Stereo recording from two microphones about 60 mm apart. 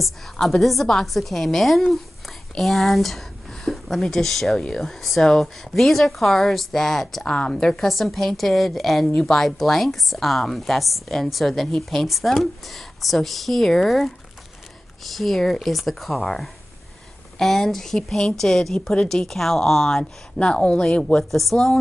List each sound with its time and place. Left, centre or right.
0.0 s a woman's voice: centre
7.2 s a woman's voice: centre
21.3 s a woman's voice: centre